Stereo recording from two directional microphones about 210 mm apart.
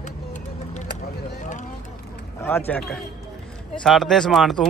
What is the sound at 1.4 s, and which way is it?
Vehicle, 35° left (ahead or behind).